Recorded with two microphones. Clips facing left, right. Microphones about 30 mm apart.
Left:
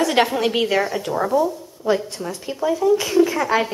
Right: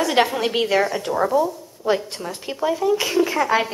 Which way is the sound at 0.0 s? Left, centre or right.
Centre.